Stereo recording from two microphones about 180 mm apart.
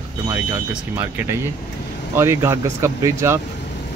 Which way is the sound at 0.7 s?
10° right (ahead or behind).